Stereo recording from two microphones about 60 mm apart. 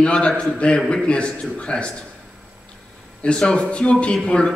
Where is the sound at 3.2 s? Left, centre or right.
Centre.